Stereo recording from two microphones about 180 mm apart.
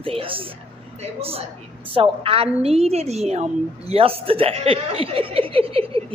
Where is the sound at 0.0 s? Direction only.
30° right (ahead or behind).